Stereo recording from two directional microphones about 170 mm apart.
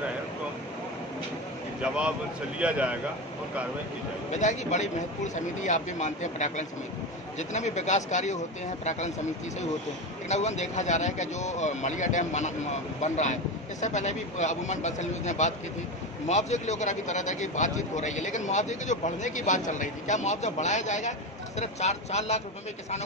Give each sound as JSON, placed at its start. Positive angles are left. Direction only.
{"t": 1.8, "sound": "speech", "side_deg": -5}
{"t": 4.3, "sound": "speech", "side_deg": 45}
{"t": 10.2, "sound": "speech", "side_deg": 40}